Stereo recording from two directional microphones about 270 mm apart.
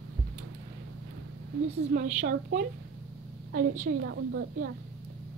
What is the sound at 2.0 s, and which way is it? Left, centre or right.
A woman's voice, right.